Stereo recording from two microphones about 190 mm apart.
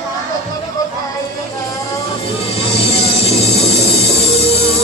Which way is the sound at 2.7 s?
35° left (ahead or behind).